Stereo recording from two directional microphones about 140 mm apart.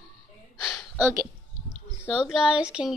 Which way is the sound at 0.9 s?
15° right (ahead or behind).